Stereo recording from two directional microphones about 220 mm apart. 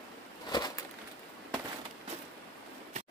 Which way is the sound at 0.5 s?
20° left (ahead or behind).